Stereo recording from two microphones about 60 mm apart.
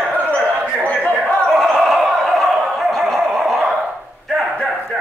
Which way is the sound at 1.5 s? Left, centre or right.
Centre.